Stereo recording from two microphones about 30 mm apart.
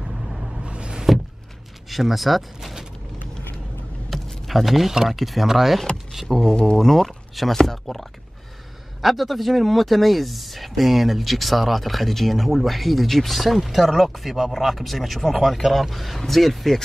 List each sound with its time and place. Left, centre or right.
0.7 s a sound: right
1.9 s speech: centre
4.1 s vehicle: centre
5.0 s speech: centre